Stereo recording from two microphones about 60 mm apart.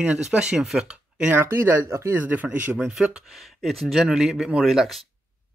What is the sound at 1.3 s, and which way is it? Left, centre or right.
Speech, right.